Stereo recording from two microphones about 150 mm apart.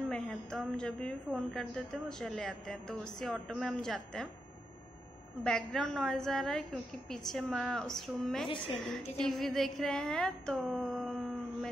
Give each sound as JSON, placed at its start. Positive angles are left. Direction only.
{"t": 0.1, "sound": "a woman's voice", "side_deg": 5}
{"t": 5.4, "sound": "a woman's voice", "side_deg": 5}